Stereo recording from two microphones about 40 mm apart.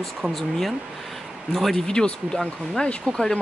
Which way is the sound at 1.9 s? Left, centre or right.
Left.